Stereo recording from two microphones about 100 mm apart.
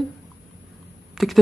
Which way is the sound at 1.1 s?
Centre (ahead or behind).